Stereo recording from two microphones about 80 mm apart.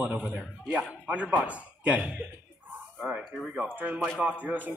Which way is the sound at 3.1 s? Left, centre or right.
Centre.